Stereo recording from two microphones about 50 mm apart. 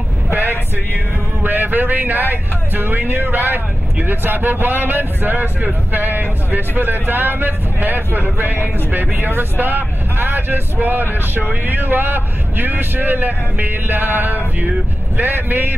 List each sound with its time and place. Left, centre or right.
1.4 s speech: right